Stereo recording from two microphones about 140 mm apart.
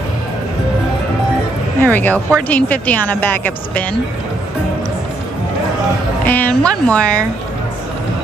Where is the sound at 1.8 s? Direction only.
10° left (ahead or behind).